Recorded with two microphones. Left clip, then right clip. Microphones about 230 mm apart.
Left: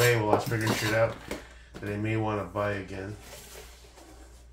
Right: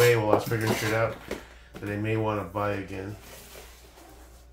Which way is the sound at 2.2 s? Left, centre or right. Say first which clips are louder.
Right 1 dB; right.